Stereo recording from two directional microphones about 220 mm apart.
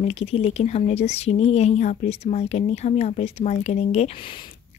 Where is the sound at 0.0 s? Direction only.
30° left (ahead or behind).